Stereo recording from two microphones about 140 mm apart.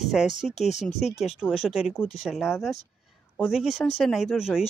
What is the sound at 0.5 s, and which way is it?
Speech, 55° left (ahead or behind).